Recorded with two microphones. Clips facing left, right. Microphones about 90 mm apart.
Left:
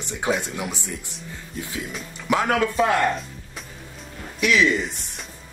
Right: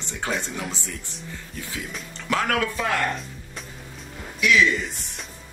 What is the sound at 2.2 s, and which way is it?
Speech, 20° left (ahead or behind).